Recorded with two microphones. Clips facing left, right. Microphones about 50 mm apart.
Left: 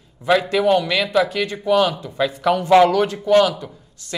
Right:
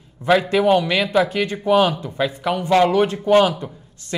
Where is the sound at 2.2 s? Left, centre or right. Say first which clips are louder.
Left 4 dB; right.